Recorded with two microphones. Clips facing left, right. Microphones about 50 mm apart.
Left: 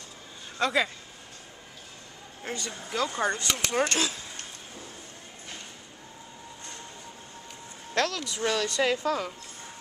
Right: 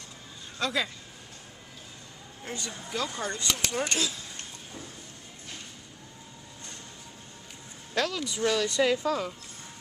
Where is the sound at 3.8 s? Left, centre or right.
Left.